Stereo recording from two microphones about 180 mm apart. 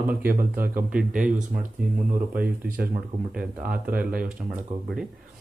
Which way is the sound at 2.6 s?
50° right (ahead or behind).